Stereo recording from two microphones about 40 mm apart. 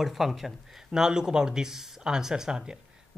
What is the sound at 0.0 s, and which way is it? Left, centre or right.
Speech, centre.